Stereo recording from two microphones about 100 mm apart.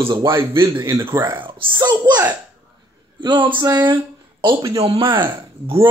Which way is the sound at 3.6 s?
35° right (ahead or behind).